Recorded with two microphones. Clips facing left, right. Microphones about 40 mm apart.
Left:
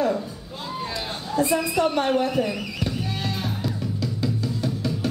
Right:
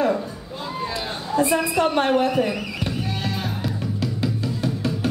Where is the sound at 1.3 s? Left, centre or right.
Right.